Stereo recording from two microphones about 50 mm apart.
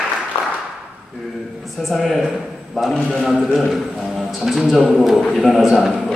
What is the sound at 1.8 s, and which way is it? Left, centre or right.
A man's voice, centre.